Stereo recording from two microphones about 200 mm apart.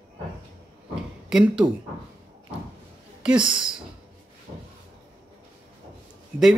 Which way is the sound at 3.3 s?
25° right (ahead or behind).